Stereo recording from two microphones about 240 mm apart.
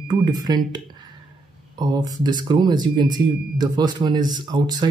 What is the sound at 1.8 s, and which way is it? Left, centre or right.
Speech, centre.